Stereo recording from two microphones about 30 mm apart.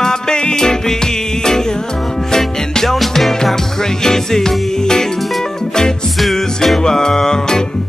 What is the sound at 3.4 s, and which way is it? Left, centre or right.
Music, centre.